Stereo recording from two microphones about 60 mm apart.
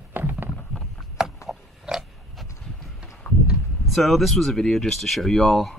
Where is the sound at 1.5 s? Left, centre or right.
Centre.